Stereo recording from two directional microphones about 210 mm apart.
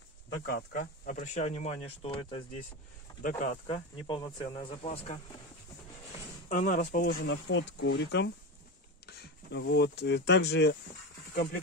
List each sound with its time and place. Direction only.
0.5 s speech: 45° left (ahead or behind); by 5.2 s 30° left (ahead or behind)
6.5 s speech: 35° left (ahead or behind)
7.2 s speech: 60° left (ahead or behind)